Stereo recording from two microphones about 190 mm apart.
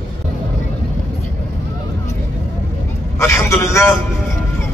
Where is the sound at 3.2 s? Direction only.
15° left (ahead or behind).